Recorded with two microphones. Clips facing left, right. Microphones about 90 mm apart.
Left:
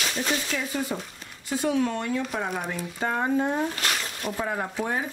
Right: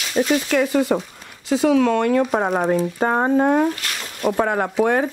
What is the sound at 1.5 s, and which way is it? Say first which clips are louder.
Speech: right 9 dB; 90° right.